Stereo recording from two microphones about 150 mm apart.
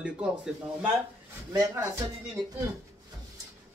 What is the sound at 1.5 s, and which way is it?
Speech, 25° right (ahead or behind).